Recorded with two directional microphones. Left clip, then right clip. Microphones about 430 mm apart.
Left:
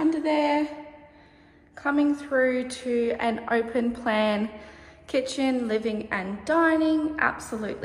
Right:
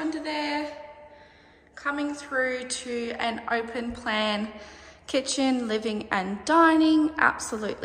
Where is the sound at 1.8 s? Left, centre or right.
Centre.